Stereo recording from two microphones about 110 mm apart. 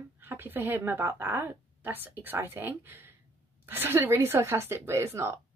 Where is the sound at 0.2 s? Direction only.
20° right (ahead or behind).